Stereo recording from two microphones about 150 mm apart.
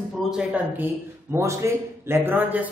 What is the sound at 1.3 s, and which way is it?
A man's voice, 15° right (ahead or behind).